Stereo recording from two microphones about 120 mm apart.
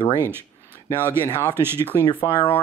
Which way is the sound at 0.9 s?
20° right (ahead or behind).